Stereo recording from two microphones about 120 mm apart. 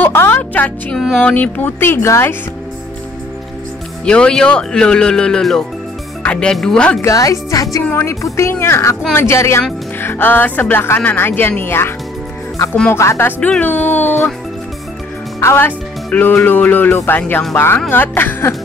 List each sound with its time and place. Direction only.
0.0 s music: 20° left (ahead or behind)
0.9 s music: centre (ahead or behind)
1.3 s speech: 15° left (ahead or behind)
4.0 s speech: 5° left (ahead or behind)
7.0 s speech: 30° left (ahead or behind)
12.9 s speech: 20° left (ahead or behind)
13.4 s speech: 10° left (ahead or behind)
15.4 s speech: 20° left (ahead or behind)